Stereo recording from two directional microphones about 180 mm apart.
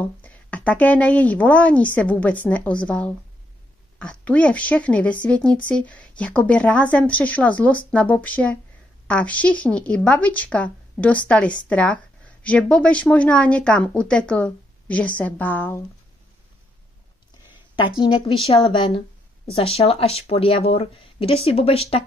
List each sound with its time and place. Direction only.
0.0 s a woman's voice: 10° left (ahead or behind)
17.7 s speech: 25° left (ahead or behind)